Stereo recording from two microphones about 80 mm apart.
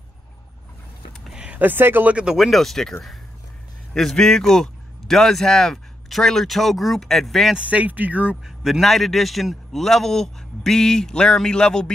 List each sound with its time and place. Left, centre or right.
1.2 s a sound: centre
1.6 s speech: right
2.1 s speech: centre
7.5 s speech: centre
8.6 s speech: centre